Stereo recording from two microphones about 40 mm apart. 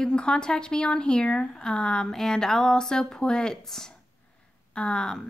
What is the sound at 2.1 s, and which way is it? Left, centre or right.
Speech, centre.